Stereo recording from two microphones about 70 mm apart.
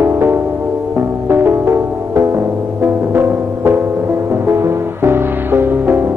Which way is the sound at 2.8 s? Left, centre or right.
Right.